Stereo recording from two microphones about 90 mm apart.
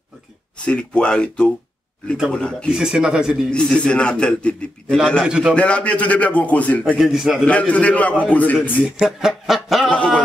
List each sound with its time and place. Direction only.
0.7 s a man's voice: 10° left (ahead or behind)
2.7 s speech: 5° right (ahead or behind)
3.4 s a man's voice: 10° left (ahead or behind)
5.2 s speech: 5° right (ahead or behind)
5.5 s a man's voice: 15° left (ahead or behind)
7.0 s speech: 5° right (ahead or behind)
7.4 s a man's voice: 15° left (ahead or behind)
8.8 s speech: 10° right (ahead or behind)
9.8 s a sound: 15° left (ahead or behind)